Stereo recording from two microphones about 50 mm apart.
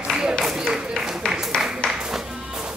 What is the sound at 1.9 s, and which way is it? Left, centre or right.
Music, centre.